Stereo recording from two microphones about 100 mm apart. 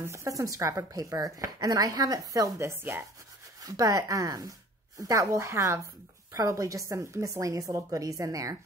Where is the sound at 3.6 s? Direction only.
35° right (ahead or behind).